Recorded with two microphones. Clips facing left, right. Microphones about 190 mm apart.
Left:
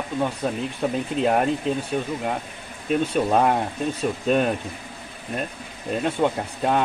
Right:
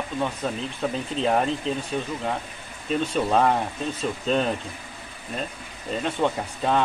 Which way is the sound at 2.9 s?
10° left (ahead or behind).